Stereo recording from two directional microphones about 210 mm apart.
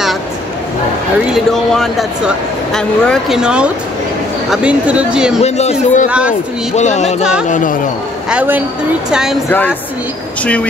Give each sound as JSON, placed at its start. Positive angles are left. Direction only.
{"t": 1.3, "sound": "speech", "side_deg": 0}
{"t": 5.4, "sound": "a man's voice", "side_deg": 30}
{"t": 6.0, "sound": "speech", "side_deg": -5}
{"t": 6.7, "sound": "a man's voice", "side_deg": 35}
{"t": 8.3, "sound": "a woman's voice", "side_deg": -5}
{"t": 10.4, "sound": "speech", "side_deg": 5}